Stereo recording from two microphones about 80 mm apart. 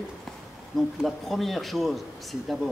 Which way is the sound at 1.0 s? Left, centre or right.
Centre.